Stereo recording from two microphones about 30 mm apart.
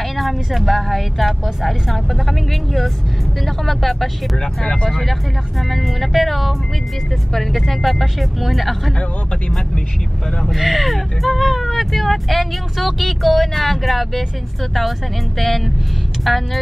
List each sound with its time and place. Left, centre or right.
0.2 s speech: centre
4.4 s speech: left
4.8 s speech: centre
7.5 s speech: centre
10.5 s speech: centre